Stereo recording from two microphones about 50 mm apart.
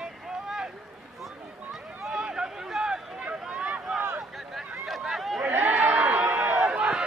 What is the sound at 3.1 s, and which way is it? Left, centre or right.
Boat, right.